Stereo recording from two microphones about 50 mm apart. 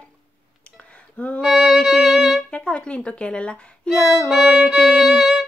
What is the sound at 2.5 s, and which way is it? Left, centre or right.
A woman's voice, left.